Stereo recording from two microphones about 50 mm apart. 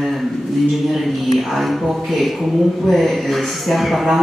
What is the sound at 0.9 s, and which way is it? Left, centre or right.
A man's voice, centre.